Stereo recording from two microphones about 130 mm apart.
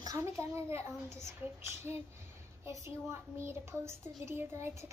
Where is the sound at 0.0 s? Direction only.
25° right (ahead or behind).